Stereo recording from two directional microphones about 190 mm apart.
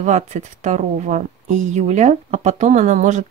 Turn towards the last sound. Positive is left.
turn(degrees=-40)  # may be behind; listen again after turning